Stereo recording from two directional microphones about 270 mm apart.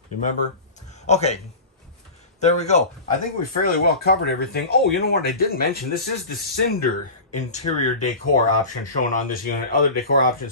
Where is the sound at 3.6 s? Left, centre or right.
Left.